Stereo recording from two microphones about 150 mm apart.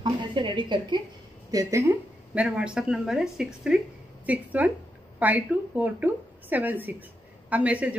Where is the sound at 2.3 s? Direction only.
5° right (ahead or behind).